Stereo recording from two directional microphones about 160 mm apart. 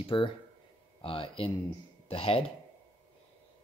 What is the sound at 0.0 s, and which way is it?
Speech, 30° left (ahead or behind).